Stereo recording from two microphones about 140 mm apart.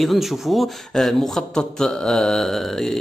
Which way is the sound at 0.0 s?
Centre (ahead or behind).